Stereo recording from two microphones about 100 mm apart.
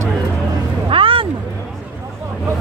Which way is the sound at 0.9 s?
60° right (ahead or behind).